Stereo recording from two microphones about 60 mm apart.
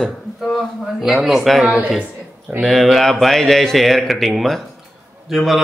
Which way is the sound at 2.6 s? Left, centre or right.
Centre.